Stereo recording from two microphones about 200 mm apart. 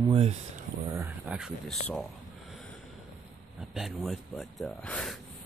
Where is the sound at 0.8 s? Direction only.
10° right (ahead or behind).